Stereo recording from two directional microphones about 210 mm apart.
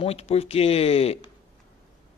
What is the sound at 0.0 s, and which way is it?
Speech, 30° left (ahead or behind).